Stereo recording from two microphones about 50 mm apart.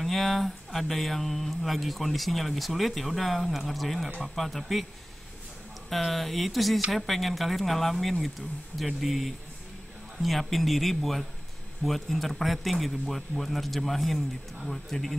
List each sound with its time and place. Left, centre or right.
0.0 s speech: centre
5.9 s speech: centre